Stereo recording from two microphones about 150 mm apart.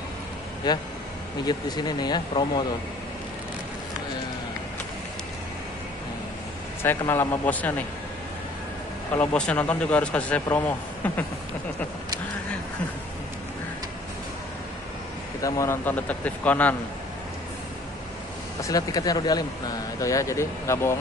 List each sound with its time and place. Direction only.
0.7 s speech: 30° left (ahead or behind)
6.8 s speech: 15° left (ahead or behind)
9.1 s speech: 10° left (ahead or behind)
15.4 s speech: 20° left (ahead or behind)
18.6 s speech: 25° left (ahead or behind)